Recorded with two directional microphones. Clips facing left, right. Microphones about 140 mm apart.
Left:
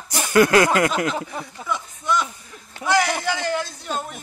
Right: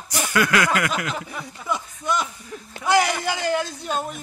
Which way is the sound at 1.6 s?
10° right (ahead or behind).